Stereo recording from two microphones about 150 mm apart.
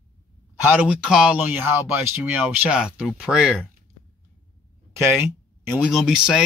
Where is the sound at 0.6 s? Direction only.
10° right (ahead or behind).